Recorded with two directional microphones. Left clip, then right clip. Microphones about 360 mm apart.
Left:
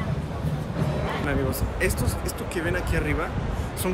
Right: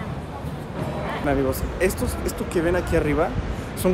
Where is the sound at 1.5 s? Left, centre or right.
Centre.